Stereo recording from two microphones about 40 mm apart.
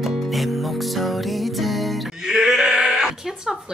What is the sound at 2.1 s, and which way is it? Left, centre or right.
Male singing, centre.